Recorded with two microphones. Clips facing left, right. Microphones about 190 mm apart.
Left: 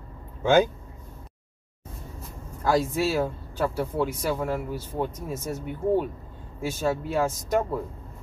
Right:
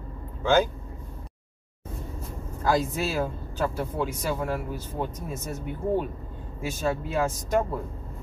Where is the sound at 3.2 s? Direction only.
10° left (ahead or behind).